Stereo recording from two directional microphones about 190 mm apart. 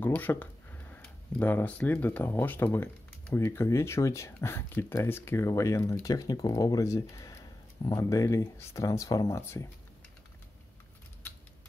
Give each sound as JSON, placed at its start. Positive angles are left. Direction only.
{"t": 0.0, "sound": "speech", "side_deg": 10}